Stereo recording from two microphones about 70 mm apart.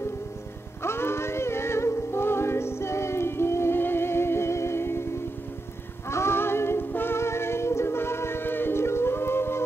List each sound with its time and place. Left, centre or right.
0.8 s music: left
6.0 s music: left